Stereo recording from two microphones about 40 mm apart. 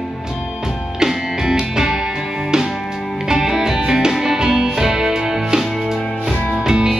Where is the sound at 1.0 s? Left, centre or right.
Centre.